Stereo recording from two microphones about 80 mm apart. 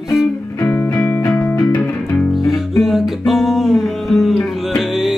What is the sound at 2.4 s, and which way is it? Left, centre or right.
Music, centre.